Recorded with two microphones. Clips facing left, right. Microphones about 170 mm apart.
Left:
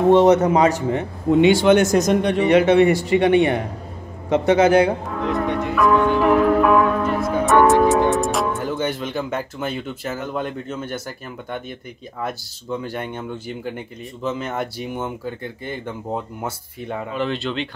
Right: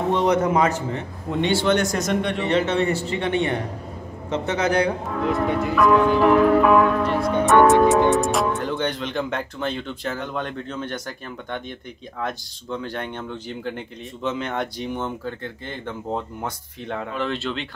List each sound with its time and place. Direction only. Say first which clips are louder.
0.2 s speech: left 5 dB; 35° left (ahead or behind)
0.9 s speech: left 9 dB; 15° left (ahead or behind)
1.7 s speech: left 6 dB; 40° left (ahead or behind)
2.4 s speech: left 9 dB; 10° left (ahead or behind)
4.7 s speech: left 5 dB; centre (ahead or behind)
7.2 s music: even; 5° left (ahead or behind)
8.1 s speech: even; centre (ahead or behind)